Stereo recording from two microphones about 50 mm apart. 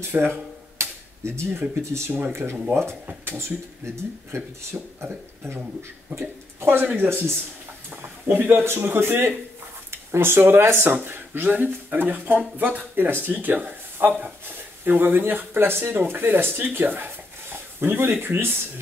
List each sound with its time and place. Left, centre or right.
0.1 s a sound: right
1.2 s speech: right
2.7 s speech: right
3.3 s speech: right
7.0 s a man's voice: right
8.3 s a man's voice: right
9.8 s a sound: right
10.4 s a man's voice: right